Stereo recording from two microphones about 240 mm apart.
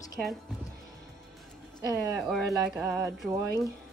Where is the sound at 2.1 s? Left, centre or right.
Centre.